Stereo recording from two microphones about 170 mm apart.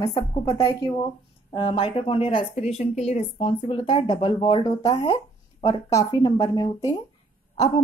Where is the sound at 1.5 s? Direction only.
30° left (ahead or behind).